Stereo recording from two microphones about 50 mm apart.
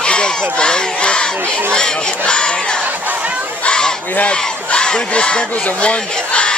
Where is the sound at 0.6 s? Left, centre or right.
Centre.